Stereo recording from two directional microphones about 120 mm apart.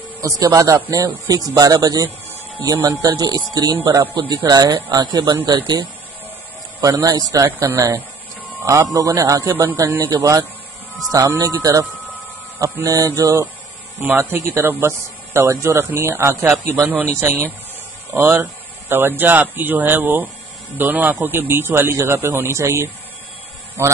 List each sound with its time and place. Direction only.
0.2 s speech: 30° right (ahead or behind)
10.1 s speech: 30° right (ahead or behind)
14.0 s speech: 15° right (ahead or behind)